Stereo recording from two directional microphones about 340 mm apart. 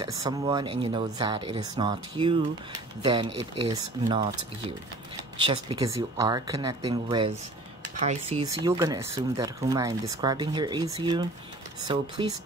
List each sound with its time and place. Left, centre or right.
0.2 s speech: centre
3.3 s speech: right
4.0 s speech: centre
5.4 s speech: centre